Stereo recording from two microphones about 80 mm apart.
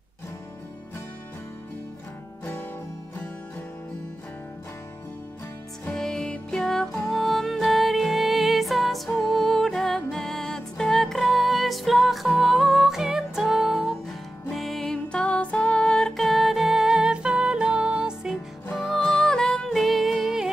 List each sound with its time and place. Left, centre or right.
2.4 s music: left
5.9 s music: centre
18.8 s music: centre